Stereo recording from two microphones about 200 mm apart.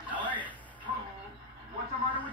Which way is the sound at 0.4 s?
10° left (ahead or behind).